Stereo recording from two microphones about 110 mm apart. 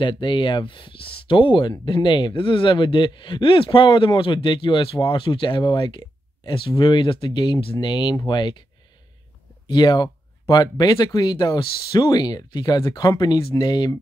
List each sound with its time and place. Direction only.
0.0 s speech: 45° left (ahead or behind)
9.7 s speech: 40° left (ahead or behind)